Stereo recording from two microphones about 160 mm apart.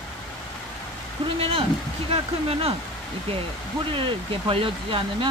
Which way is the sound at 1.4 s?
35° right (ahead or behind).